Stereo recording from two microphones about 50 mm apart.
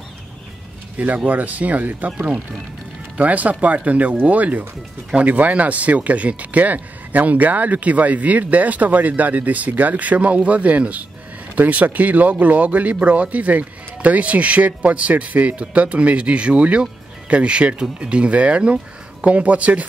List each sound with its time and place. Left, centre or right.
0.9 s speech: right